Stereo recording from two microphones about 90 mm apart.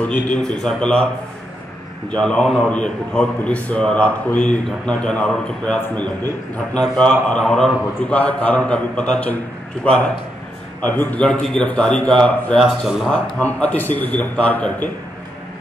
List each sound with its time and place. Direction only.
0.0 s a man's voice: 10° left (ahead or behind)
2.0 s a man's voice: 10° left (ahead or behind)
13.1 s a man's voice: 15° left (ahead or behind)